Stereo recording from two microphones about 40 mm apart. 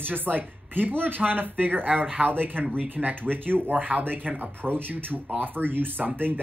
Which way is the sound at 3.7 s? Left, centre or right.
Right.